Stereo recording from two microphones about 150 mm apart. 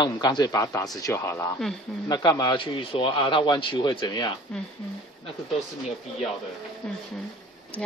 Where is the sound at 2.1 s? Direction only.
30° left (ahead or behind).